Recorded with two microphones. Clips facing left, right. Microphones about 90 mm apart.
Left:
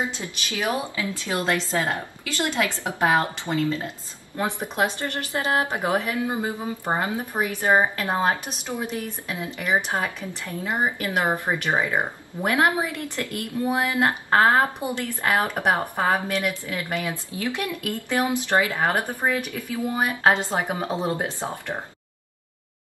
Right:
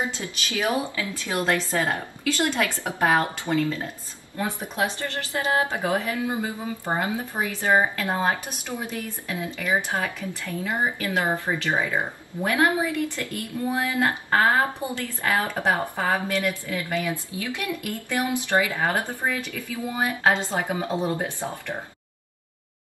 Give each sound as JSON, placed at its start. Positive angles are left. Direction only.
{"t": 0.2, "sound": "speech", "side_deg": 20}
{"t": 4.9, "sound": "speech", "side_deg": -25}
{"t": 5.7, "sound": "speech", "side_deg": 20}